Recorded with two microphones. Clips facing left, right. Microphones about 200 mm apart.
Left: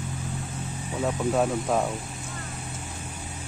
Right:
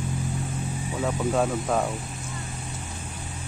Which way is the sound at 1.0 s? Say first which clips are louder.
Even; 5° left (ahead or behind).